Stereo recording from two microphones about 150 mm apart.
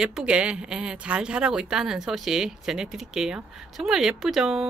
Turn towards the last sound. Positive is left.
turn(degrees=0)  # may be behind; listen again after turning